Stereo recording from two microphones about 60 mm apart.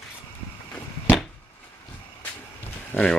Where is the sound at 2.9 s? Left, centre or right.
Left.